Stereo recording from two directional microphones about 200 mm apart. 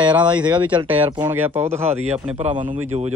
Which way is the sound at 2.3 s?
30° right (ahead or behind).